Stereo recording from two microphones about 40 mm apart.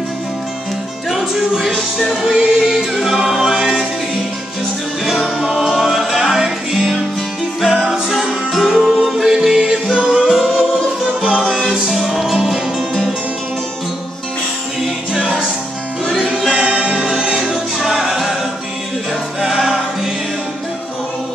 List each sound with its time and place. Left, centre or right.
1.1 s music: centre
1.7 s music: centre
2.2 s music: centre
2.7 s music: centre
5.6 s music: centre
10.3 s music: centre
16.4 s music: right
19.4 s music: centre